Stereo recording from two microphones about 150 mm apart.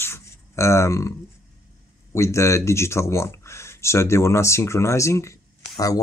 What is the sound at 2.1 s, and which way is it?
Speech, 20° left (ahead or behind).